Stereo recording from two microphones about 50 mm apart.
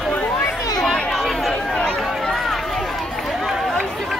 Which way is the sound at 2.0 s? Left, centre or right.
Centre.